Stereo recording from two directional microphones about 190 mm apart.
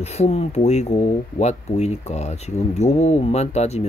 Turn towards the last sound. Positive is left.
turn(degrees=35)  # may be behind; listen again after turning